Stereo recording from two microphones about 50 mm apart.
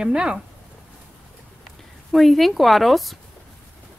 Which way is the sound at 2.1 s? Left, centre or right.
Centre.